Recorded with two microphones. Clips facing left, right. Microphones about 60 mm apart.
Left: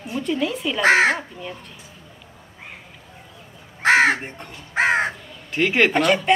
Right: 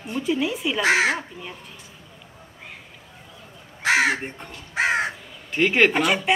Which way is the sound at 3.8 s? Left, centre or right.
Left.